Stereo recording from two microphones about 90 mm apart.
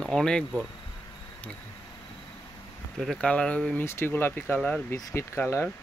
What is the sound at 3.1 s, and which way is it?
Speech, 10° left (ahead or behind).